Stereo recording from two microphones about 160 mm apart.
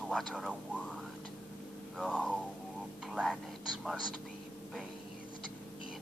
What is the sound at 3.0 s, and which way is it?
Speech, 5° right (ahead or behind).